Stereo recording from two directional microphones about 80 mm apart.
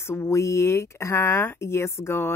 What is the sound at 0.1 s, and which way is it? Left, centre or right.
Speech, left.